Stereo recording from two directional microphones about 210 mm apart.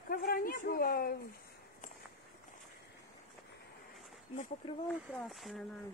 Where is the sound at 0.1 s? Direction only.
45° left (ahead or behind).